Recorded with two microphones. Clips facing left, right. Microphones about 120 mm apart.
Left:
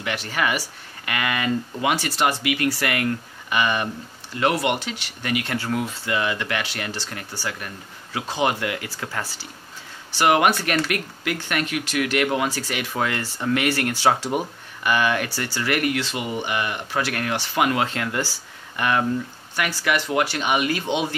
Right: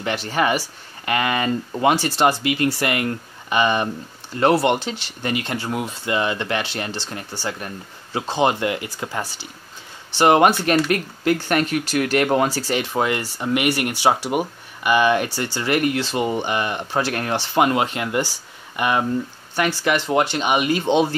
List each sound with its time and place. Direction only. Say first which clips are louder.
0.0 s speech: right 4 dB; 30° right (ahead or behind)
10.1 s speech: right 4 dB; 30° right (ahead or behind)
17.8 s speech: right 3 dB; 20° right (ahead or behind); by 21.2 s 35° right (ahead or behind)